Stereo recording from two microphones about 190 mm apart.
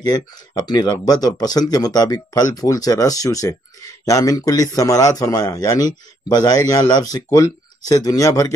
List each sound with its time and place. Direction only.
0.0 s speech: 20° left (ahead or behind)